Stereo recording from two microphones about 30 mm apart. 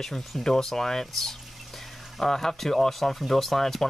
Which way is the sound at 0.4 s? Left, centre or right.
Centre.